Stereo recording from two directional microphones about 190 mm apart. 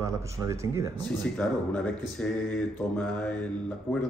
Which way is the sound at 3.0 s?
5° left (ahead or behind).